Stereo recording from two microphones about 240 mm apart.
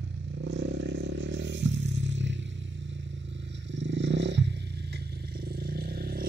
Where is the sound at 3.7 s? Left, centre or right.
Right.